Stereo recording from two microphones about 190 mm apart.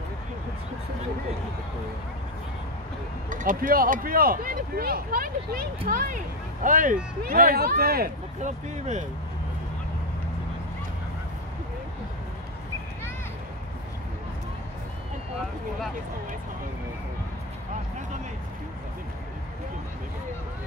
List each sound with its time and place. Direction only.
3.3 s speech: 45° right (ahead or behind)
8.4 s speech: 40° right (ahead or behind)